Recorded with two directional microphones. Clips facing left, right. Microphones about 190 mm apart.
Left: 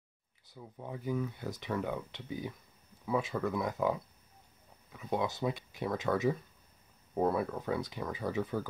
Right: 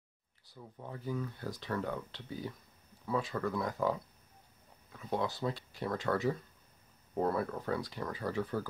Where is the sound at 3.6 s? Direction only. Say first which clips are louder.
Left 1 dB; 20° left (ahead or behind).